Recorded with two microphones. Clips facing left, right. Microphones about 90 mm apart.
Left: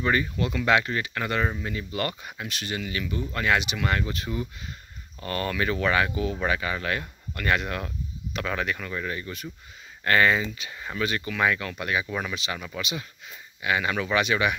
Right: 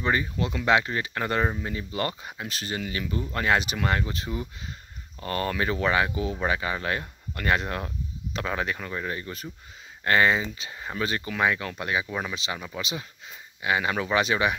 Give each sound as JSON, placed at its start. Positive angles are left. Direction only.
{"t": 0.0, "sound": "speech", "side_deg": -20}
{"t": 3.9, "sound": "speech", "side_deg": -25}
{"t": 10.0, "sound": "speech", "side_deg": -20}